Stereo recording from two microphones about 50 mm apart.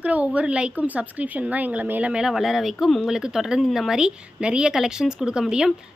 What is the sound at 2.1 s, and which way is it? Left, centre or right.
A woman's voice, centre.